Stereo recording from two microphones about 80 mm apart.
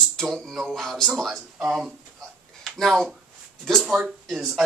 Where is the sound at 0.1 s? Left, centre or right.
Centre.